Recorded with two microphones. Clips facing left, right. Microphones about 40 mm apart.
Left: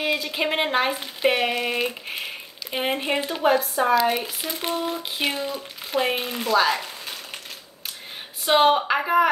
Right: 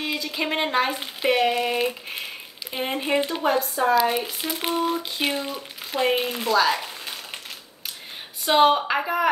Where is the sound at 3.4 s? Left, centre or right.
Left.